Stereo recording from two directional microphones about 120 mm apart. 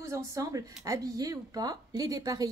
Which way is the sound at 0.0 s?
25° right (ahead or behind).